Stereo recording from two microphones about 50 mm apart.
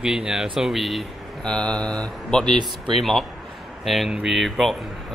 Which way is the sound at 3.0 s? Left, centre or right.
Centre.